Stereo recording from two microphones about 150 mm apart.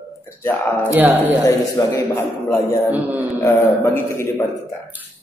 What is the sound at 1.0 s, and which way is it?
Speech, 10° right (ahead or behind).